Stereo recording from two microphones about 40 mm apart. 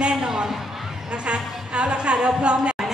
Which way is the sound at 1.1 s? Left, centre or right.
Right.